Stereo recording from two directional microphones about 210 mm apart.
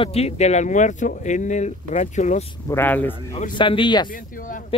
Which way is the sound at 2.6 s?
10° left (ahead or behind).